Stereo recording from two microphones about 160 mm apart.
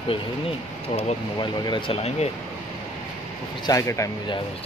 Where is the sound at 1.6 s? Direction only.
35° left (ahead or behind).